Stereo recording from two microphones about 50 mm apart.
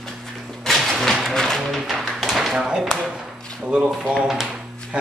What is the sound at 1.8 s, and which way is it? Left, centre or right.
Tap, centre.